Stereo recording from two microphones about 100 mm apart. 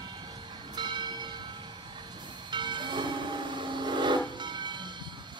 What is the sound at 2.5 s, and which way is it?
Train, 50° right (ahead or behind).